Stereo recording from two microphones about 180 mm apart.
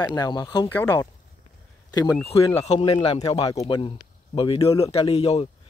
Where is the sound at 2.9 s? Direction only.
25° left (ahead or behind).